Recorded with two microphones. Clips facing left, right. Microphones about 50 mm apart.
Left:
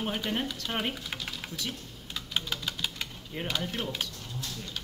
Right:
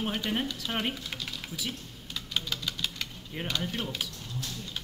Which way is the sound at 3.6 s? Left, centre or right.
Centre.